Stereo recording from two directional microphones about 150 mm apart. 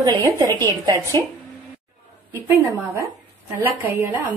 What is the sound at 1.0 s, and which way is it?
Speech, 15° left (ahead or behind).